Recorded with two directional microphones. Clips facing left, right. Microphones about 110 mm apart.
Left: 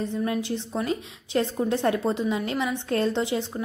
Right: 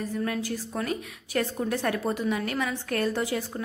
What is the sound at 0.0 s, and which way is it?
A woman's voice, 25° left (ahead or behind).